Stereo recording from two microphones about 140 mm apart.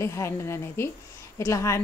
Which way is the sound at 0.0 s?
20° left (ahead or behind).